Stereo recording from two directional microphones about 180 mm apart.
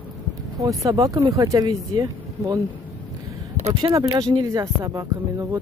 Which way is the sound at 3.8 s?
25° right (ahead or behind).